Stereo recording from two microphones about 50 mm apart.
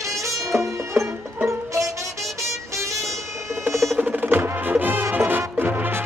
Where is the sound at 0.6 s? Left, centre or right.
Right.